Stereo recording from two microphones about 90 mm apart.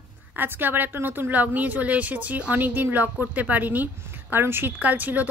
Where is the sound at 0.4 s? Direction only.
20° right (ahead or behind).